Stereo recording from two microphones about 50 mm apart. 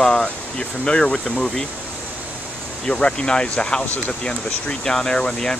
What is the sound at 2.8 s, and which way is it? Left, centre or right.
Speech, centre.